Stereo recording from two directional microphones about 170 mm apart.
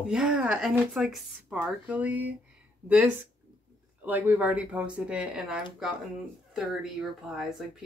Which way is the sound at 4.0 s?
10° right (ahead or behind).